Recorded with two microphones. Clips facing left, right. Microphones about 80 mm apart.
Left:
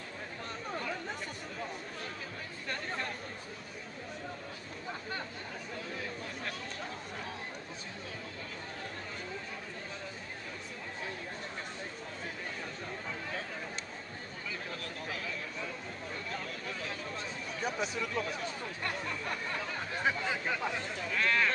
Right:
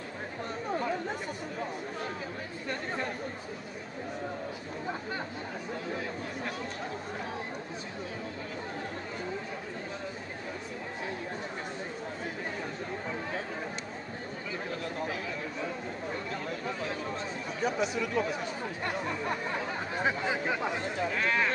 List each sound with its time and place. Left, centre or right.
17.6 s speech: centre